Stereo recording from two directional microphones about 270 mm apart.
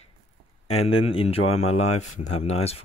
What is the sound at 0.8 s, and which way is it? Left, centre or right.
Speech, left.